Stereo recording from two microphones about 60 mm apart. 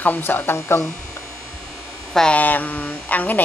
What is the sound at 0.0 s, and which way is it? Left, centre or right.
Speech, left.